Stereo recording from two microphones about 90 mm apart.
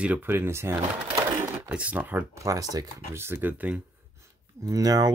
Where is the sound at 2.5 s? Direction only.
40° right (ahead or behind).